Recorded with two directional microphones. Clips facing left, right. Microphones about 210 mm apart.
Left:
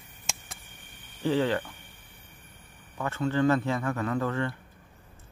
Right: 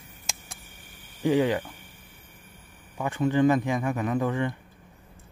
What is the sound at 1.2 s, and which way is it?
Speech, 15° right (ahead or behind).